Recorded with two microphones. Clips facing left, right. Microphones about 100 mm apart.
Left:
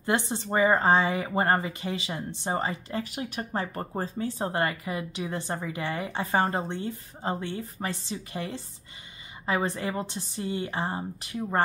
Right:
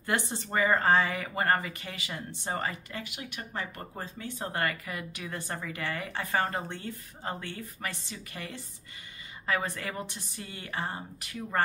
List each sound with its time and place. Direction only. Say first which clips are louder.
0.0 s speech: left 4 dB; 20° left (ahead or behind)
3.0 s speech: left 8 dB; 40° left (ahead or behind)